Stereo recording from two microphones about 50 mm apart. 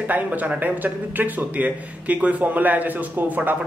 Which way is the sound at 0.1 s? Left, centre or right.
Right.